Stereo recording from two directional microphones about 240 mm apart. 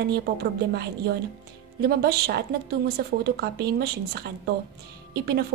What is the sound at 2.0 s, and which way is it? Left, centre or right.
A woman's voice, right.